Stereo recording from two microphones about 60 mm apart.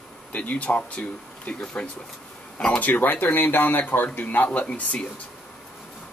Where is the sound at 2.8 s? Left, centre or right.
Left.